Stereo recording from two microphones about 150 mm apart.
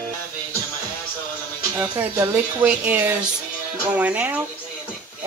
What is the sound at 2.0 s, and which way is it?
Speech, 10° right (ahead or behind).